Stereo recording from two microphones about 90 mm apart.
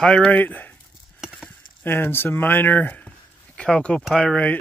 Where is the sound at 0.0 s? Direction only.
10° left (ahead or behind).